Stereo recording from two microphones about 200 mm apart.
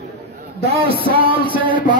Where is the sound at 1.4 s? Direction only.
25° right (ahead or behind).